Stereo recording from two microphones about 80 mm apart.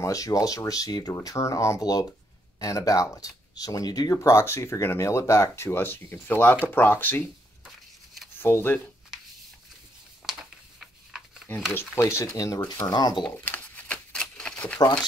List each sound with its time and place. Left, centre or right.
0.0 s speech: left
1.1 s speech: left
7.6 s a sound: centre
8.4 s speech: left
10.2 s a sound: centre
11.7 s speech: left
12.4 s speech: left
12.9 s speech: left
13.2 s shuffling cards: centre